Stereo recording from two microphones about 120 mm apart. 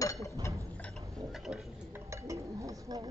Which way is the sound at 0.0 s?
30° left (ahead or behind).